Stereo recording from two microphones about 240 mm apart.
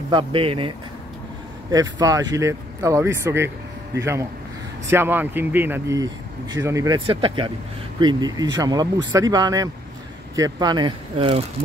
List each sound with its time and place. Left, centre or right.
0.1 s speech: right